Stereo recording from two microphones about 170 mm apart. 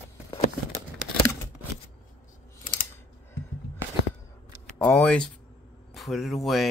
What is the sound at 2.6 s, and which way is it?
Typing, 55° left (ahead or behind).